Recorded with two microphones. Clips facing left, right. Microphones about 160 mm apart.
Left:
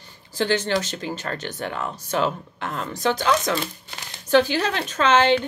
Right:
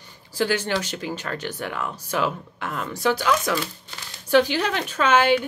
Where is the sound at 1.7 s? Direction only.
25° left (ahead or behind).